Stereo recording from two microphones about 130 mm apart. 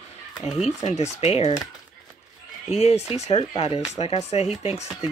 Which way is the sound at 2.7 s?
55° left (ahead or behind).